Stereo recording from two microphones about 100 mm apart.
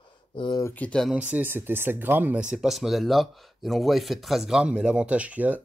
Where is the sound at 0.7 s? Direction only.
10° left (ahead or behind).